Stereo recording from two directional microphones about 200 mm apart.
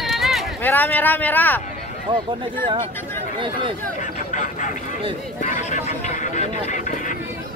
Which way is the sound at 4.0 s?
40° left (ahead or behind).